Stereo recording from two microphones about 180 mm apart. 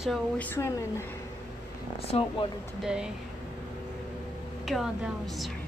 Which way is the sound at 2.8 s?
5° right (ahead or behind).